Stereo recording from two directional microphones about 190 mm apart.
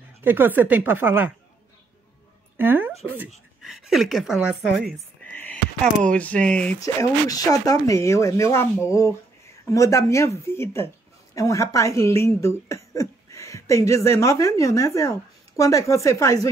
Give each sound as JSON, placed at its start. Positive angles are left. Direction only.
{"t": 0.2, "sound": "speech", "side_deg": -10}
{"t": 2.5, "sound": "speech", "side_deg": -10}
{"t": 5.2, "sound": "a sound", "side_deg": 10}
{"t": 6.1, "sound": "speech", "side_deg": 5}
{"t": 6.8, "sound": "speech", "side_deg": 20}